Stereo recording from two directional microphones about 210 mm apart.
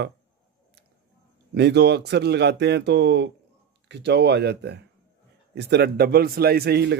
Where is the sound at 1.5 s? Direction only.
55° right (ahead or behind).